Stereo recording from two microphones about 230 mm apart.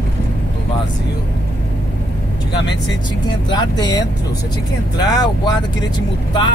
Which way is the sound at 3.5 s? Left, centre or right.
Centre.